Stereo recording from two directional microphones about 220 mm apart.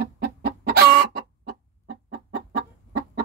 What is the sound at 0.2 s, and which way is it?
Chicken, 45° right (ahead or behind).